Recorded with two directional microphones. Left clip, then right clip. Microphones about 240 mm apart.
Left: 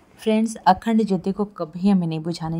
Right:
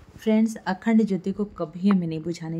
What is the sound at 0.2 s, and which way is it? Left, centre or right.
A woman's voice, centre.